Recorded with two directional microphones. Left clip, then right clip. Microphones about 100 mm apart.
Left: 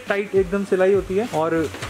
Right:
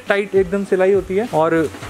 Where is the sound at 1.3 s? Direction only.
35° right (ahead or behind).